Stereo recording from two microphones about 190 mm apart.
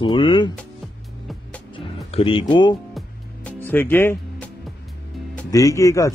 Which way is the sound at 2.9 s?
10° left (ahead or behind).